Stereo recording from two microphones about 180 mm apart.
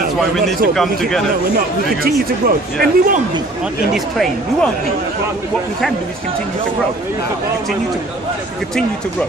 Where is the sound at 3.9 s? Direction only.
Centre (ahead or behind).